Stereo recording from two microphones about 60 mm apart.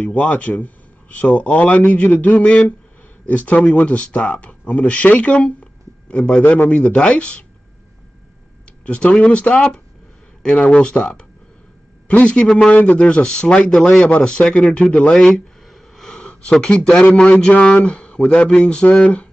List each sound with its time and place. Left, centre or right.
0.0 s a man's voice: left
5.6 s a sound: left
6.7 s speech: centre
8.8 s a man's voice: centre
15.1 s a sound: centre
16.1 s sniff: centre
16.6 s a man's voice: centre